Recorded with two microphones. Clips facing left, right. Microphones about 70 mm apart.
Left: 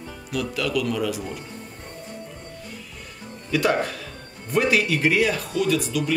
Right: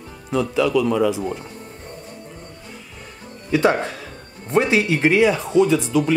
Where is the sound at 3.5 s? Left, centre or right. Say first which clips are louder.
Right 4 dB; right.